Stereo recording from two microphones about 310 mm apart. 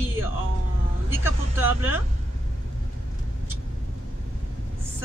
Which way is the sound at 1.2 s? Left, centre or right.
Centre.